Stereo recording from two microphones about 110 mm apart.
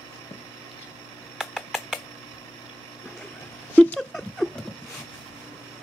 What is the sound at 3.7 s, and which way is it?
Rodents, 15° left (ahead or behind).